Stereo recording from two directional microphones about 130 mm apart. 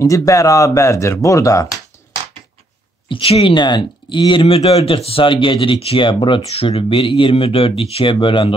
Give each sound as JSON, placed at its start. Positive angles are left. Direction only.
{"t": 0.0, "sound": "speech", "side_deg": 25}
{"t": 3.1, "sound": "speech", "side_deg": 45}